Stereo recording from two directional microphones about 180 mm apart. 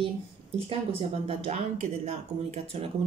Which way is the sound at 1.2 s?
35° right (ahead or behind).